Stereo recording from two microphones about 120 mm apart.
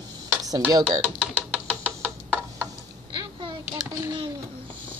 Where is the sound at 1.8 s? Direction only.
10° right (ahead or behind).